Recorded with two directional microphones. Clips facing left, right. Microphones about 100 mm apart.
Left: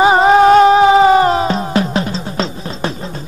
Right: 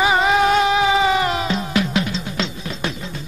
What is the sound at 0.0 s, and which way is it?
Music, 35° left (ahead or behind).